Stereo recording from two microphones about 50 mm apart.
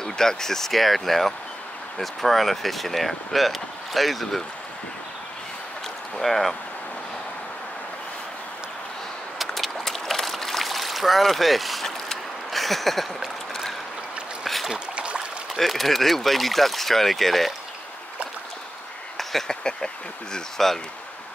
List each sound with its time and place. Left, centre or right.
0.0 s speech: centre
6.1 s speech: centre
9.4 s a sound: centre
14.4 s boat: centre
14.7 s boat: right
15.5 s speech: centre
19.1 s speech: centre